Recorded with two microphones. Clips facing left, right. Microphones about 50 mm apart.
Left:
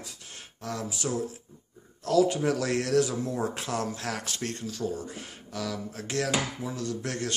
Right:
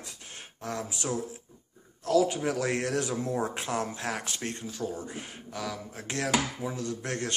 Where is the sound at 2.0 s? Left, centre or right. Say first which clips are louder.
Left 2 dB; centre.